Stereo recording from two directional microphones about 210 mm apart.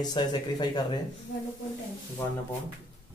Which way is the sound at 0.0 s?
20° left (ahead or behind).